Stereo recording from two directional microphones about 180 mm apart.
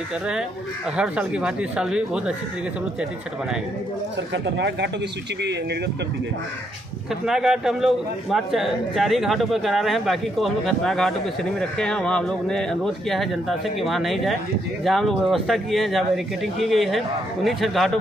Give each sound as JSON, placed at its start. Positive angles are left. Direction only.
{"t": 0.9, "sound": "a man's voice", "side_deg": -5}
{"t": 4.3, "sound": "speech", "side_deg": -70}
{"t": 7.2, "sound": "a man's voice", "side_deg": 0}